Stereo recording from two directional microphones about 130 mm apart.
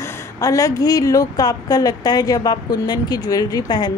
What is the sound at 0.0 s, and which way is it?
A woman's voice, 25° left (ahead or behind).